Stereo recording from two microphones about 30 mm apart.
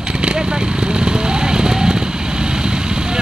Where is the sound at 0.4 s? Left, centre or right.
Right.